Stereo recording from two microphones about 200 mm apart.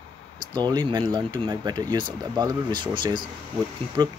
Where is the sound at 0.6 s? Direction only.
20° right (ahead or behind).